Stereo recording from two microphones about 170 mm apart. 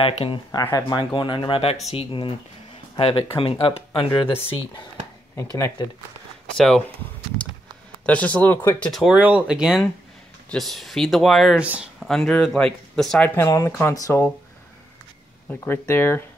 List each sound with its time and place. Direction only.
0.0 s speech: 30° left (ahead or behind)
5.3 s speech: 15° left (ahead or behind)
6.5 s speech: 5° left (ahead or behind)
8.0 s speech: 10° left (ahead or behind)
15.6 s speech: 10° left (ahead or behind)